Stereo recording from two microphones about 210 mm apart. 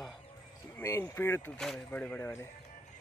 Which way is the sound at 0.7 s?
15° left (ahead or behind).